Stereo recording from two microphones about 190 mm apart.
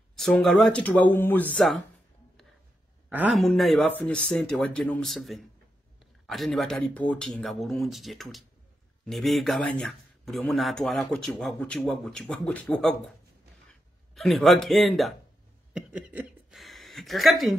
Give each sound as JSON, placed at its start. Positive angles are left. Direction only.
{"t": 0.1, "sound": "speech", "side_deg": 0}
{"t": 3.1, "sound": "a woman's voice", "side_deg": -5}